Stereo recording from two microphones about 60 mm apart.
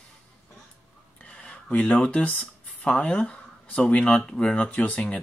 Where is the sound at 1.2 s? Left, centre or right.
Centre.